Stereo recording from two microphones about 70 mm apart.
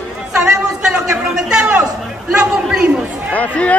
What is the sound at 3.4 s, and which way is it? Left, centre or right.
Speech, left.